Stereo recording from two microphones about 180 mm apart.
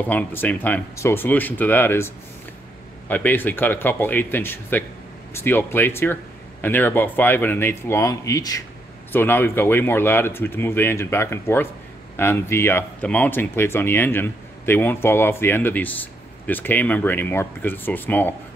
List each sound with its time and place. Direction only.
0.0 s speech: 10° left (ahead or behind)